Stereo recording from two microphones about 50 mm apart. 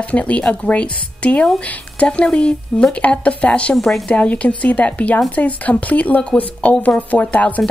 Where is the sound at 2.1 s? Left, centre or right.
Left.